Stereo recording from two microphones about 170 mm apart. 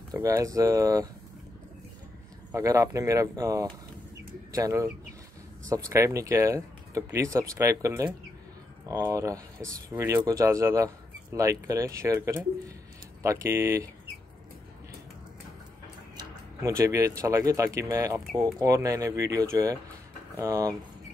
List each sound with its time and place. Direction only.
0.1 s speech: 20° right (ahead or behind)
2.5 s speech: 20° right (ahead or behind)
16.2 s speech: 15° right (ahead or behind)